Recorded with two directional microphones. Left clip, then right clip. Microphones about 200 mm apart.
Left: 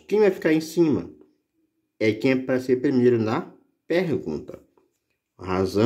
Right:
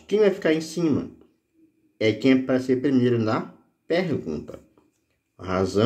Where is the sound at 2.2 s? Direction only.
40° left (ahead or behind).